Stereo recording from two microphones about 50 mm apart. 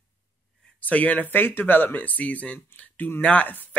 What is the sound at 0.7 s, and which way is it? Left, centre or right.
Speech, left.